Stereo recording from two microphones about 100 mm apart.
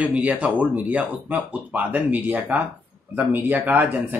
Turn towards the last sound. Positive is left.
turn(degrees=-15)  # may be behind; listen again after turning